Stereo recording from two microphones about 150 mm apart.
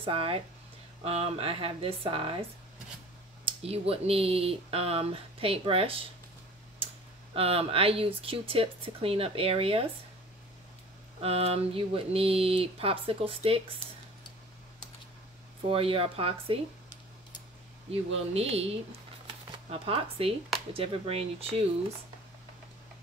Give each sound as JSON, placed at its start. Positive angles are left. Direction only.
{"t": 0.0, "sound": "speech", "side_deg": -35}
{"t": 3.4, "sound": "speech", "side_deg": -40}
{"t": 7.3, "sound": "speech", "side_deg": -40}
{"t": 11.1, "sound": "speech", "side_deg": -40}
{"t": 15.6, "sound": "speech", "side_deg": -40}
{"t": 18.3, "sound": "speech", "side_deg": -45}